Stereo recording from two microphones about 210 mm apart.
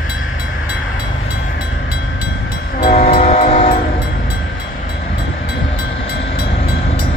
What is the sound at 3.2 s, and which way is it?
Music, 30° left (ahead or behind).